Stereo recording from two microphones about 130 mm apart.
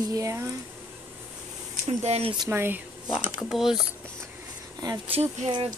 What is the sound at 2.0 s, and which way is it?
Speech, 55° right (ahead or behind).